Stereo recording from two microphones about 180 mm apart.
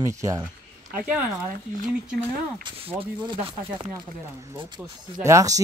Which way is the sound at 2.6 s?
25° right (ahead or behind).